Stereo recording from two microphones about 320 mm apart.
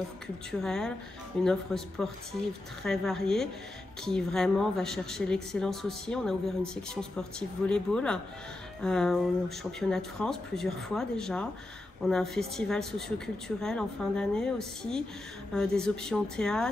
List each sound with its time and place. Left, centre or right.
0.5 s a woman's voice: centre